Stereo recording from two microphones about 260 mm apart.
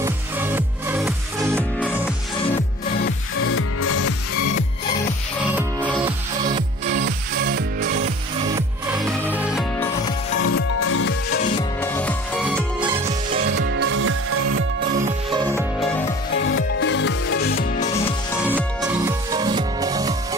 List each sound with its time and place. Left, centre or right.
0.0 s music: centre
3.3 s music: left
7.1 s music: right
9.0 s music: centre
10.4 s music: left
11.8 s music: centre
13.5 s music: right
16.5 s music: left
17.7 s music: left
18.9 s music: centre